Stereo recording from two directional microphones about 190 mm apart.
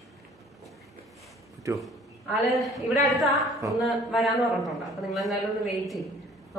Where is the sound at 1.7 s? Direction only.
15° right (ahead or behind).